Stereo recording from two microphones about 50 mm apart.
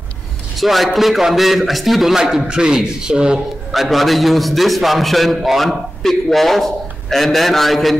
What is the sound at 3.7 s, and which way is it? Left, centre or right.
A man's voice, centre.